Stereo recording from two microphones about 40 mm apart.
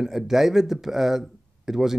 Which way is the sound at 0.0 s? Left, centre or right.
Centre.